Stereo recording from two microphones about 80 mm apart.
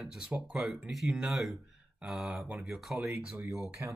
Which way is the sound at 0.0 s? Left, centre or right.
Centre.